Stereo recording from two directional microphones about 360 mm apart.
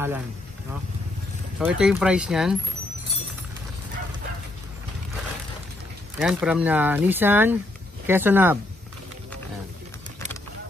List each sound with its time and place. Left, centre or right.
1.6 s speech: centre
6.1 s speech: centre